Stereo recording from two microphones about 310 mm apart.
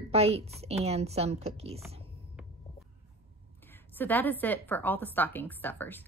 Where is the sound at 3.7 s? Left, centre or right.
Centre.